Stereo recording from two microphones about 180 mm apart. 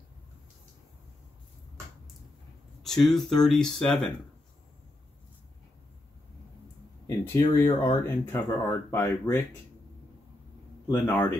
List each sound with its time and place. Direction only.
2.8 s speech: centre (ahead or behind)
7.1 s speech: 15° left (ahead or behind)
10.9 s speech: 15° left (ahead or behind)